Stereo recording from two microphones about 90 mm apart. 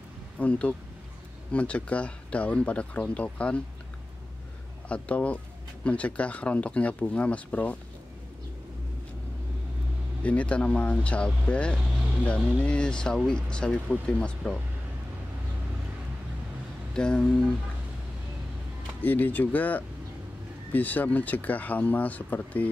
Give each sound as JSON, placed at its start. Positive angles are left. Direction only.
{"t": 0.4, "sound": "speech", "side_deg": 15}
{"t": 4.8, "sound": "speech", "side_deg": 15}
{"t": 10.2, "sound": "speech", "side_deg": 15}
{"t": 16.9, "sound": "speech", "side_deg": 10}
{"t": 19.0, "sound": "speech", "side_deg": 20}